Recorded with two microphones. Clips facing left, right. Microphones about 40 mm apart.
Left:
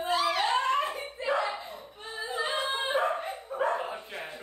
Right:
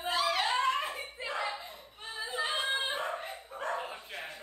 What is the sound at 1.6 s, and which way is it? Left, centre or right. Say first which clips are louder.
Dog: left 5 dB; centre.